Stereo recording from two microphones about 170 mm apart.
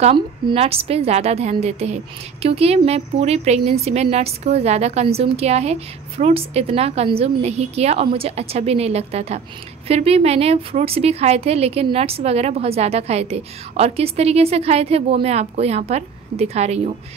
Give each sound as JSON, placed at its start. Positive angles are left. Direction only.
{"t": 0.0, "sound": "a woman's voice", "side_deg": -35}